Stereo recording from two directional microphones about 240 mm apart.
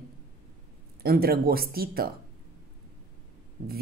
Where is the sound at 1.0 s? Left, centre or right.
Right.